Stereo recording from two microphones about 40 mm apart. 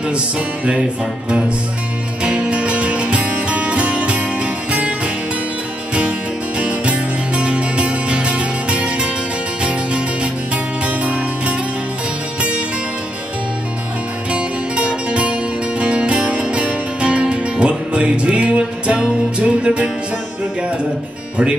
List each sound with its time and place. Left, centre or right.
2.2 s music: right
6.6 s music: right
14.3 s music: right